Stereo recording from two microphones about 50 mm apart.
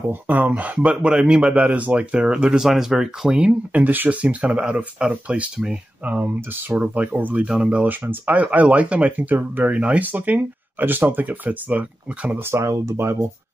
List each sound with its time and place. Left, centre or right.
0.1 s speech: right
0.7 s speech: centre
1.7 s speech: right
2.1 s speech: centre
3.3 s speech: right
6.0 s speech: right
7.4 s speech: centre
7.9 s speech: right
8.3 s speech: right
9.1 s speech: right
9.7 s speech: right
12.4 s speech: right